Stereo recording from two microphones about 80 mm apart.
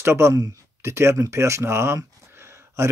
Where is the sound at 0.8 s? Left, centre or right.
Right.